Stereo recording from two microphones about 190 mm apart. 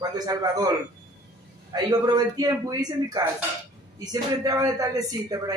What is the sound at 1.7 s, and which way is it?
A man's voice, 20° right (ahead or behind).